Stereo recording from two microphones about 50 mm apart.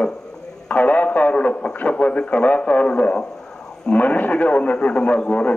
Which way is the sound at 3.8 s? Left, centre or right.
Left.